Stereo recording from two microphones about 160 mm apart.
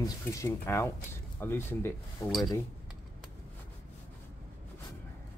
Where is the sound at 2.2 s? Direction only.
5° left (ahead or behind).